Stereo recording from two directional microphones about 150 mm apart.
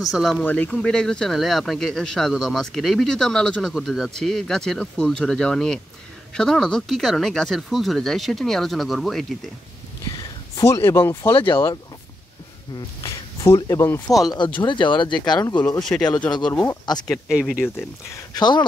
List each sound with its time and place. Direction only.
0.0 s speech: centre (ahead or behind)
0.4 s speech: 10° left (ahead or behind)
10.1 s a sound: 25° left (ahead or behind)
11.5 s speech: 20° left (ahead or behind)
14.6 s speech: 30° left (ahead or behind)
15.8 s speech: 5° left (ahead or behind)
16.8 s speech: 25° left (ahead or behind)
17.3 s speech: 5° right (ahead or behind)
17.7 s speech: 25° left (ahead or behind)